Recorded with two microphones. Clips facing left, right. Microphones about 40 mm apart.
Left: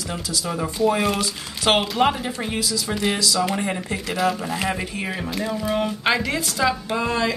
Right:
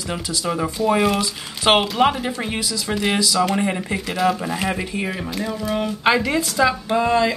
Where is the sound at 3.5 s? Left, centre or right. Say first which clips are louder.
Right 3 dB; centre.